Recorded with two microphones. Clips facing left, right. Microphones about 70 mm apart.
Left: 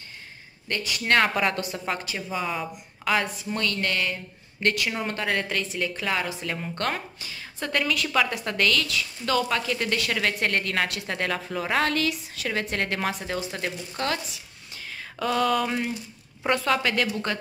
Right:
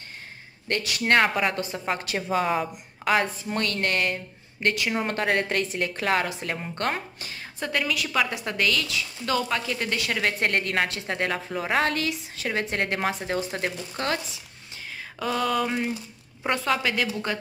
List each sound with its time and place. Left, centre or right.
0.7 s a woman's voice: right
1.2 s a woman's voice: centre
1.5 s a woman's voice: right
2.0 s a woman's voice: right
2.5 s a woman's voice: right
4.6 s a woman's voice: right
5.0 s a woman's voice: right
6.4 s a woman's voice: right
7.2 s a woman's voice: right
7.6 s a woman's voice: centre; by 14.2 s right
15.1 s a woman's voice: centre